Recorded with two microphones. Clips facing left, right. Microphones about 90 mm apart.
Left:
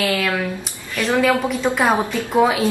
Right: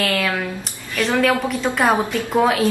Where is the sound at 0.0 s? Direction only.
5° left (ahead or behind).